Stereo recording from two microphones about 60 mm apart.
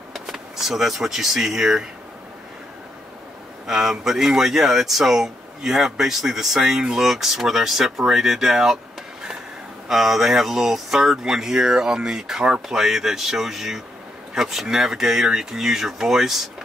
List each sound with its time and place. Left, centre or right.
0.1 s speech: centre
3.6 s speech: centre
9.8 s speech: centre